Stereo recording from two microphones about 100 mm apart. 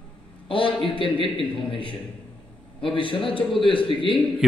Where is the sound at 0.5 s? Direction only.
60° left (ahead or behind).